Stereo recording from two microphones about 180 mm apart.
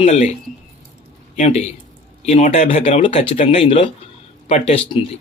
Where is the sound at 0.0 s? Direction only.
35° left (ahead or behind).